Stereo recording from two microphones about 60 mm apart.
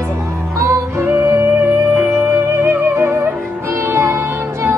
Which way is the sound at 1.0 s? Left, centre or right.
Right.